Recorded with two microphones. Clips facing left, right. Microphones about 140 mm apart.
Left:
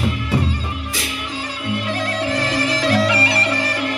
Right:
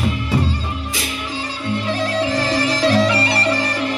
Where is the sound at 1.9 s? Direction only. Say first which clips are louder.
Right 3 dB; 30° right (ahead or behind).